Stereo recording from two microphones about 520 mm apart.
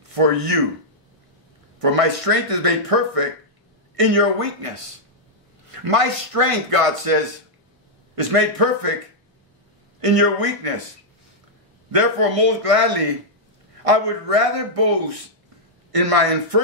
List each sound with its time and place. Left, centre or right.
0.1 s speech: right
1.8 s a man's voice: right
9.9 s speech: right
11.9 s speech: right